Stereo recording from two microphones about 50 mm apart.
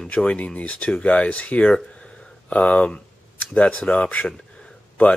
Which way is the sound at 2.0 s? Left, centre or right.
Left.